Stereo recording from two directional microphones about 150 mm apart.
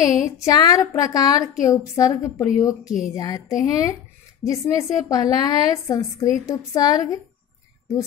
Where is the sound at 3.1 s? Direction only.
25° left (ahead or behind).